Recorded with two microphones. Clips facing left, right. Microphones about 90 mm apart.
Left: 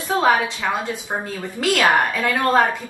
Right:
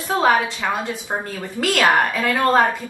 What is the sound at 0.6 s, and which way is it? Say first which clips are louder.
Speech: even; 15° right (ahead or behind).